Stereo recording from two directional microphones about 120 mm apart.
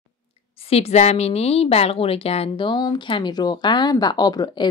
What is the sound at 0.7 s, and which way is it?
Speech, 60° left (ahead or behind).